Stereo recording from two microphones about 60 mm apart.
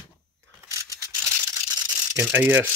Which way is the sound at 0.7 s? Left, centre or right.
Right.